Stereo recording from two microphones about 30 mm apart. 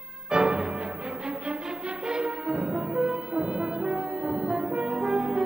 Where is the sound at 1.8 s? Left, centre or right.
Right.